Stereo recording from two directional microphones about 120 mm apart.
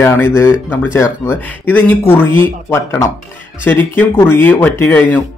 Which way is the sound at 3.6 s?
15° left (ahead or behind).